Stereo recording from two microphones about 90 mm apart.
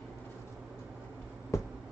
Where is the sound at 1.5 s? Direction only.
35° left (ahead or behind).